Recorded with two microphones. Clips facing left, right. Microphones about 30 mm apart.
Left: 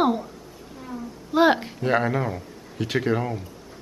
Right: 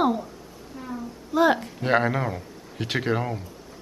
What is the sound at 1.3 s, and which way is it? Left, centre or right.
Speech, left.